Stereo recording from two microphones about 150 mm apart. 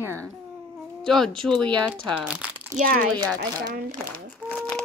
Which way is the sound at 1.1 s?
5° left (ahead or behind).